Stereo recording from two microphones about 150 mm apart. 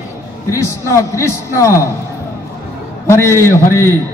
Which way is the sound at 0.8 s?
20° left (ahead or behind).